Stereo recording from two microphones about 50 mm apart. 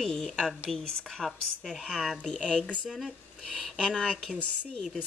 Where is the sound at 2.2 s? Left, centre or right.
Centre.